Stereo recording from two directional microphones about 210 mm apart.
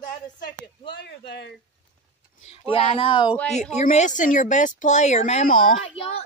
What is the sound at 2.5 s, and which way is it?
Speech, 25° left (ahead or behind).